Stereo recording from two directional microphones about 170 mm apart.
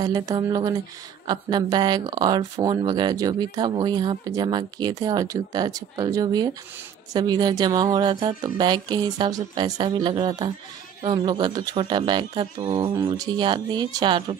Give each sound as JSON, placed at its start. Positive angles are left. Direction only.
{"t": 0.0, "sound": "speech", "side_deg": -20}